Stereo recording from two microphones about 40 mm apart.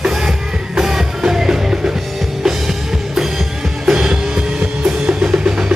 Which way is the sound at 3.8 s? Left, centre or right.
Centre.